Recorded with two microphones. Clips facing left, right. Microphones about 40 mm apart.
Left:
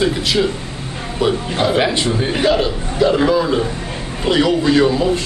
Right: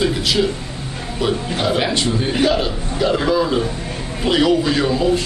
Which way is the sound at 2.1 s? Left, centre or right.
Centre.